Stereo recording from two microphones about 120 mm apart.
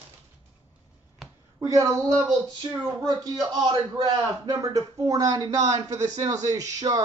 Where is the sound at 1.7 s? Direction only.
30° right (ahead or behind).